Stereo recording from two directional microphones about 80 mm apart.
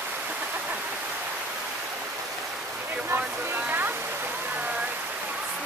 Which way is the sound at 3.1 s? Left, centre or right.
Right.